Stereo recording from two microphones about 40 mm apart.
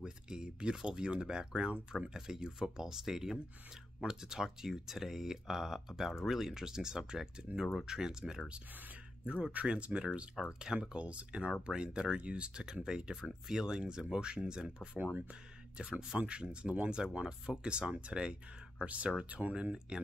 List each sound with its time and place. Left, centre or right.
0.0 s a sound: centre
0.8 s speech: right
9.2 s speech: right
13.1 s speech: centre
18.9 s speech: right
19.6 s speech: right